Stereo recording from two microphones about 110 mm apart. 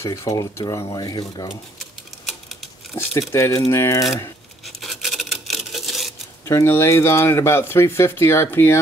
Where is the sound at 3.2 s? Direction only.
25° left (ahead or behind).